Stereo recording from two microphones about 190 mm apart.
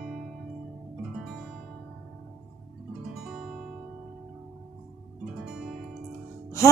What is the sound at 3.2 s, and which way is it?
Guitar, centre (ahead or behind).